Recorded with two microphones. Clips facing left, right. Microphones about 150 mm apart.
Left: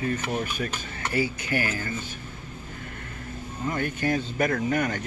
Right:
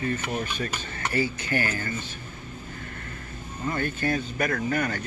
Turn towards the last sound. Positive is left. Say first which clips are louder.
# left 1 dB
turn(degrees=20)  # may be behind; listen again after turning